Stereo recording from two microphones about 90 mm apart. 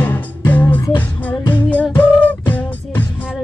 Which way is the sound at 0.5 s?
20° left (ahead or behind).